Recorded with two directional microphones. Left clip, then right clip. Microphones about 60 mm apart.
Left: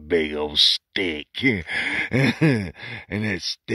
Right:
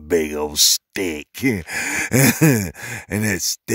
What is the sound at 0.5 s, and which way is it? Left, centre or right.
Speech, right.